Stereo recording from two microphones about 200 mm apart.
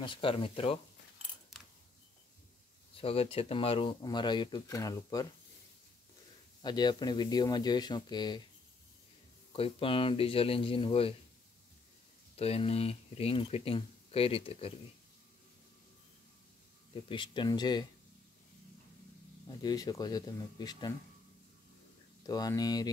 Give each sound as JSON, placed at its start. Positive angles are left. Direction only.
{"t": 0.0, "sound": "speech", "side_deg": 25}
{"t": 3.0, "sound": "speech", "side_deg": 30}
{"t": 6.6, "sound": "speech", "side_deg": 20}
{"t": 9.5, "sound": "speech", "side_deg": 25}
{"t": 12.4, "sound": "speech", "side_deg": 30}
{"t": 17.1, "sound": "speech", "side_deg": 25}
{"t": 19.4, "sound": "speech", "side_deg": 20}
{"t": 22.2, "sound": "speech", "side_deg": 20}